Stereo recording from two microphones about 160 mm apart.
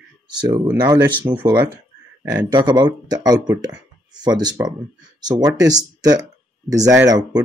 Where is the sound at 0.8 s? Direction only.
25° right (ahead or behind).